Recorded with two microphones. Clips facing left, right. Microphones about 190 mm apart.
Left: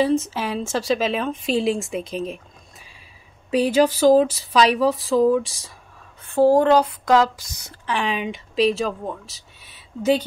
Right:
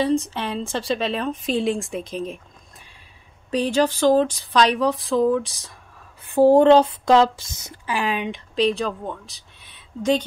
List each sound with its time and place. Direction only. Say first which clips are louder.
0.0 s speech: left 1 dB; 5° left (ahead or behind)
6.2 s speech: right 2 dB; 15° right (ahead or behind)
7.8 s speech: even; 5° right (ahead or behind)